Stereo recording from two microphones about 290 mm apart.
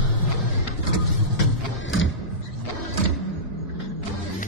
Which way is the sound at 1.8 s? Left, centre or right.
Left.